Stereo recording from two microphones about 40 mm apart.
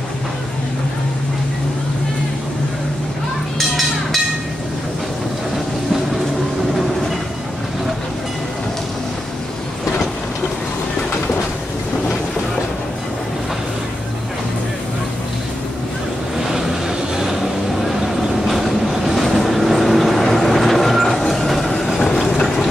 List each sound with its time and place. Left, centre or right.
3.5 s a sound: centre
17.2 s train: centre
22.0 s train: centre